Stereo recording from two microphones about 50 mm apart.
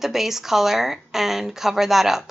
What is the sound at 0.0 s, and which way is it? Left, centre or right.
Speech, centre.